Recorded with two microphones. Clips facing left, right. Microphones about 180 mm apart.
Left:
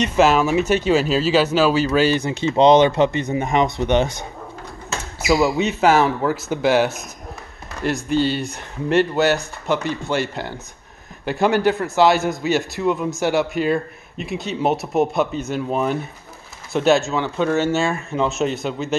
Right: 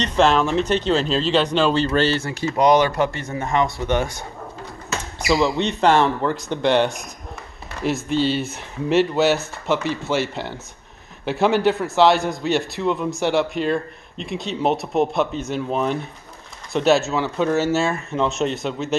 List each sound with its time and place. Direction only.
0.0 s speech: 5° left (ahead or behind)
5.2 s a man's voice: 5° left (ahead or behind)